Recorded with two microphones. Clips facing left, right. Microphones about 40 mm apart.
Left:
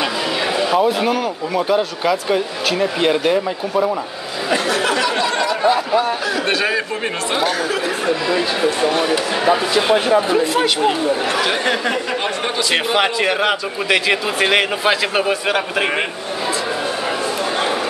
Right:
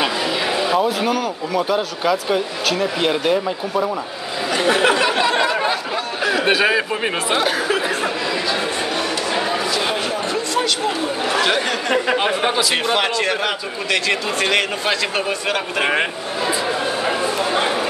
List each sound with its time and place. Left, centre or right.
0.0 s speech: centre
4.6 s a sound: right
5.4 s a sound: right
6.2 s speech: centre
8.8 s speech: centre
10.3 s a man's voice: centre
11.3 s speech: centre
11.9 s speech: centre
12.7 s a man's voice: centre